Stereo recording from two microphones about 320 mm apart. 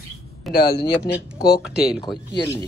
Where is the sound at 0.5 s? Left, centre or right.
Left.